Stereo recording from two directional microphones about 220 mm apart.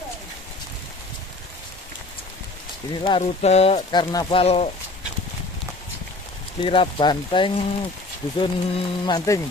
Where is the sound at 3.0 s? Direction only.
25° left (ahead or behind).